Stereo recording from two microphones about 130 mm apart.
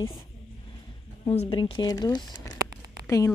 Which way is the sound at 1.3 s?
50° left (ahead or behind).